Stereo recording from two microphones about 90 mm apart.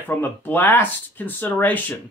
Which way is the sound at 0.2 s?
20° left (ahead or behind).